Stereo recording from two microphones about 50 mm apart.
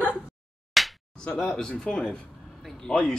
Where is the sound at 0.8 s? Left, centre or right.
Centre.